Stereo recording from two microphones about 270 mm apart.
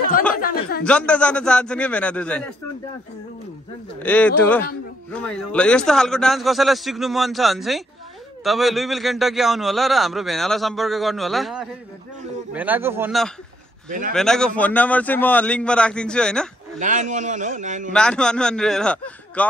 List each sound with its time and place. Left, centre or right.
0.4 s speech: left
0.8 s a man's voice: centre
4.0 s a man's voice: centre
13.8 s speech: right
14.1 s a man's voice: centre
16.8 s a man's voice: right
17.9 s a man's voice: centre